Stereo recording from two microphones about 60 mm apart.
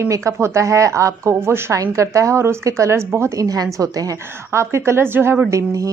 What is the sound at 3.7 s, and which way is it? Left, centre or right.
Speech, right.